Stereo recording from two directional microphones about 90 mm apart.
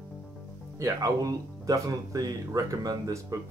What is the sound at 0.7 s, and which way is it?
Speech, 40° right (ahead or behind).